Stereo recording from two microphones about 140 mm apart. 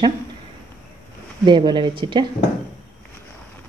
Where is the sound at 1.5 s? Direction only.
35° right (ahead or behind).